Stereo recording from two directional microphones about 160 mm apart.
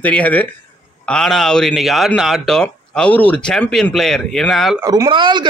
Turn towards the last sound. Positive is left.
turn(degrees=-30)  # may be behind; listen again after turning